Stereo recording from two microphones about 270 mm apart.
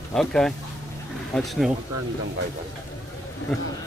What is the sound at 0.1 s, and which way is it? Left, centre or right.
Speech, centre.